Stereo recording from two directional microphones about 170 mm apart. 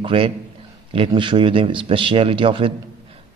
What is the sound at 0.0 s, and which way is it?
A man's voice, 30° right (ahead or behind).